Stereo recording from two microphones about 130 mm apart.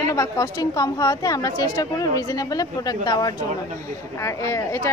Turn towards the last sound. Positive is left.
turn(degrees=25)  # may be behind; listen again after turning